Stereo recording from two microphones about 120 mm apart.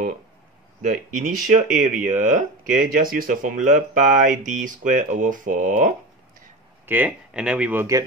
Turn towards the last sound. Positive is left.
turn(degrees=-10)  # may be behind; listen again after turning